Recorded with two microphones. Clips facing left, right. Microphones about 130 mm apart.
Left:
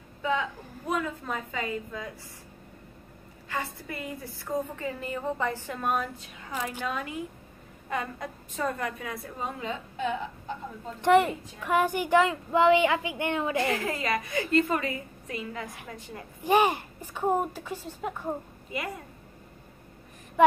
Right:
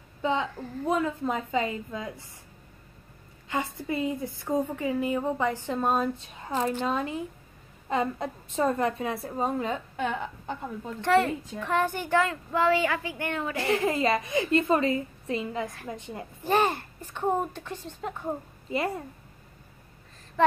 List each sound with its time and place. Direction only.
0.2 s a woman's voice: 25° right (ahead or behind)
3.4 s a woman's voice: 20° right (ahead or behind)
9.6 s a woman's voice: 50° right (ahead or behind)
11.0 s a woman's voice: 15° left (ahead or behind)
13.7 s a woman's voice: 25° right (ahead or behind)
16.4 s a woman's voice: 15° left (ahead or behind)
20.4 s speech: 15° left (ahead or behind)